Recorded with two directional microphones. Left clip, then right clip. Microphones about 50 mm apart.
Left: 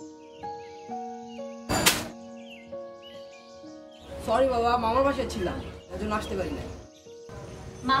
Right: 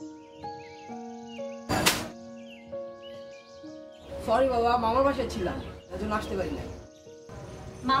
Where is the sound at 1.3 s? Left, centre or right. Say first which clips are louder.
Right 1 dB; right.